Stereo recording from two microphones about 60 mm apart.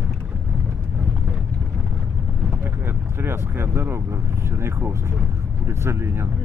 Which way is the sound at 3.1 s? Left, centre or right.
Right.